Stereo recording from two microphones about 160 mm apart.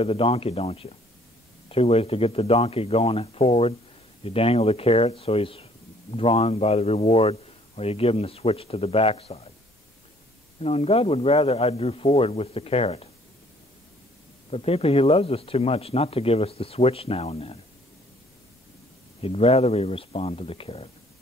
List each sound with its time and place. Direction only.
0.0 s a man's voice: 35° left (ahead or behind)
10.6 s a man's voice: 40° left (ahead or behind)
14.5 s a man's voice: 40° left (ahead or behind)
19.2 s a man's voice: 40° left (ahead or behind)